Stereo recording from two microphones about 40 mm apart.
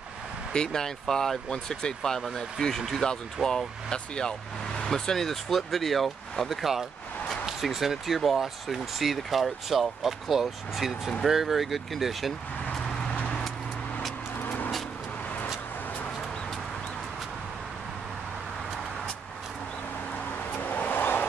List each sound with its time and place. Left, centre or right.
0.5 s speech: centre
4.8 s speech: centre
6.5 s speech: centre
13.1 s vehicle: left
14.4 s vehicle: left
20.6 s vehicle: left
20.9 s vehicle: left